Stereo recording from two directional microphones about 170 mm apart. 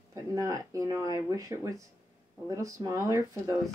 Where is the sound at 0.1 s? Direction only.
20° right (ahead or behind).